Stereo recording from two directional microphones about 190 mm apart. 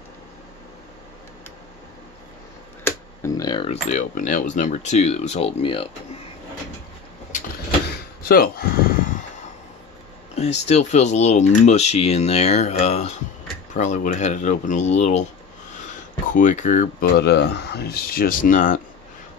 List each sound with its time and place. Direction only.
2.8 s speech: 15° left (ahead or behind)
8.3 s speech: 50° left (ahead or behind)
10.3 s speech: 35° left (ahead or behind)
16.3 s speech: 40° left (ahead or behind)
17.2 s speech: 60° left (ahead or behind); by 18.8 s 45° left (ahead or behind)